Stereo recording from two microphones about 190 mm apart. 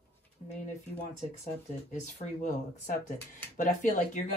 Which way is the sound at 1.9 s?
40° left (ahead or behind).